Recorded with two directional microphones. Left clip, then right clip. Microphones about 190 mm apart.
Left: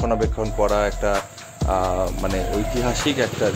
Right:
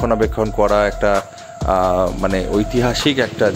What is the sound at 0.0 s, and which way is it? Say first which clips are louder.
Speech: right 5 dB; 20° right (ahead or behind).